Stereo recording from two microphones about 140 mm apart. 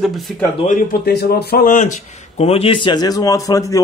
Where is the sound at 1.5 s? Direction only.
80° left; by 2.5 s 65° left (ahead or behind).